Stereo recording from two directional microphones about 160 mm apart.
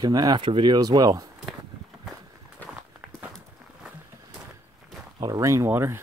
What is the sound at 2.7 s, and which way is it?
Walk, 10° right (ahead or behind).